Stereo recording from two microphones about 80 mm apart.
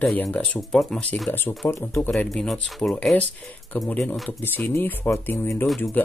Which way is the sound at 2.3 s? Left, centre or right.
Centre.